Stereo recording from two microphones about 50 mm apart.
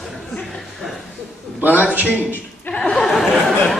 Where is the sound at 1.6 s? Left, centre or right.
Right.